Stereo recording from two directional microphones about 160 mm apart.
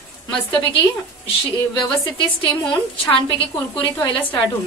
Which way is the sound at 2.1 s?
30° left (ahead or behind).